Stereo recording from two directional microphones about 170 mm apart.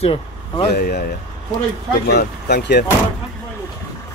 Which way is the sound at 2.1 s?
70° left (ahead or behind).